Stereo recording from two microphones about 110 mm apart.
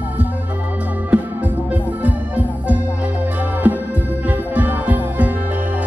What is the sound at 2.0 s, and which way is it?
Music, 15° right (ahead or behind).